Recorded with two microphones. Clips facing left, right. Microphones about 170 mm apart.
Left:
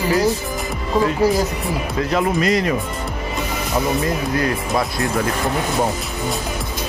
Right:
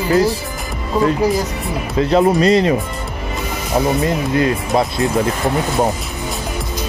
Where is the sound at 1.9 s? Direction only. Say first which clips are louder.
Right 7 dB; 30° right (ahead or behind).